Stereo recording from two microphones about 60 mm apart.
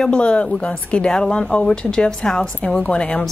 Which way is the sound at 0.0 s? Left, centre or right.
Centre.